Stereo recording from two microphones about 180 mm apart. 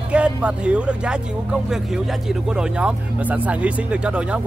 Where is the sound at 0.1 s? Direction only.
5° right (ahead or behind).